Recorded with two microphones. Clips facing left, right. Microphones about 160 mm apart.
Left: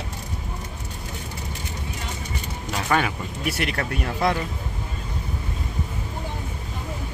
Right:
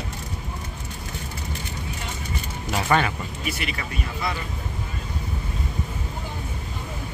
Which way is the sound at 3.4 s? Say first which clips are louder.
Left 6 dB; 70° left (ahead or behind).